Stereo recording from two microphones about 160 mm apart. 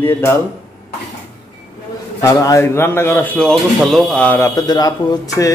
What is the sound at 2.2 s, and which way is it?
Speech, 20° left (ahead or behind).